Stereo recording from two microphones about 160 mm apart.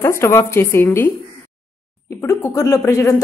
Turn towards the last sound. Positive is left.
turn(degrees=20)  # may be behind; listen again after turning